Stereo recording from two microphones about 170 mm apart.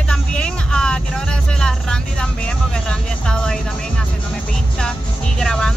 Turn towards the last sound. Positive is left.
turn(degrees=5)  # may be behind; listen again after turning